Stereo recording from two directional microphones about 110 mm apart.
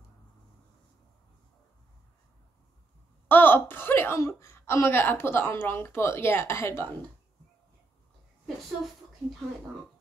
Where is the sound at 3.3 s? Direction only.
20° left (ahead or behind).